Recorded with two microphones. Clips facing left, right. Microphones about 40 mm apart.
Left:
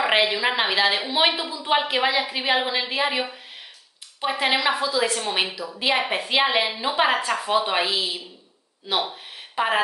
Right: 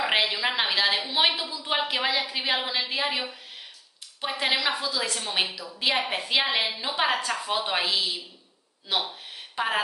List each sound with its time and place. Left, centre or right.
0.0 s a woman's voice: centre
9.6 s a woman's voice: centre